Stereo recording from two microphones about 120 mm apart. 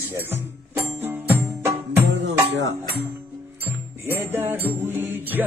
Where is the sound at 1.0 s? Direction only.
15° right (ahead or behind).